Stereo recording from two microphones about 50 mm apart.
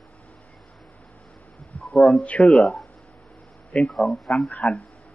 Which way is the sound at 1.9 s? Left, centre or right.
Left.